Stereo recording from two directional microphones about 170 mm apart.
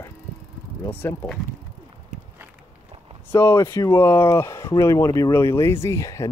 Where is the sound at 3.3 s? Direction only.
15° left (ahead or behind).